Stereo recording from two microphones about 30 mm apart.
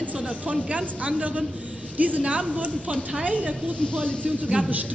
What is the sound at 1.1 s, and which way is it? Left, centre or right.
A man's voice, right.